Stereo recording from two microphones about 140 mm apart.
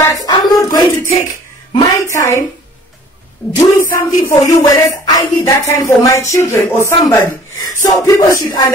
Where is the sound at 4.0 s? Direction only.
20° left (ahead or behind).